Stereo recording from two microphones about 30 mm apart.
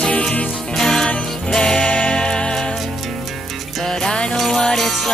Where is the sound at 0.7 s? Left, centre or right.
Centre.